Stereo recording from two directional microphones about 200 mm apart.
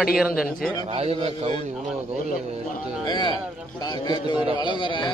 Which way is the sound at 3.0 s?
20° left (ahead or behind).